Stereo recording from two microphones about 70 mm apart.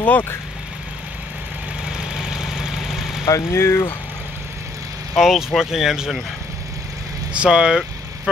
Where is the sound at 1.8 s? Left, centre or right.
Centre.